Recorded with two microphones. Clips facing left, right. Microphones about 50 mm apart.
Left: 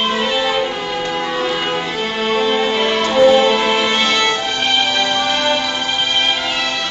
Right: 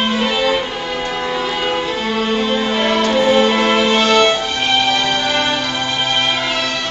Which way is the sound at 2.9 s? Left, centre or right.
Centre.